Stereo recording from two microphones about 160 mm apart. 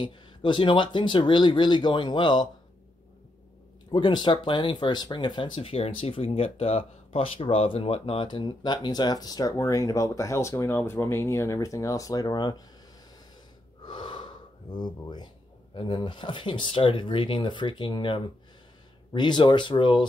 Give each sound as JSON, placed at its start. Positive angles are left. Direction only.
{"t": 0.0, "sound": "speech", "side_deg": 30}
{"t": 3.9, "sound": "speech", "side_deg": 30}
{"t": 13.8, "sound": "gasp", "side_deg": 30}
{"t": 15.7, "sound": "speech", "side_deg": 30}